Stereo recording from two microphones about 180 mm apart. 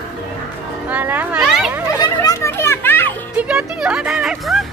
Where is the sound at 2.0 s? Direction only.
20° left (ahead or behind).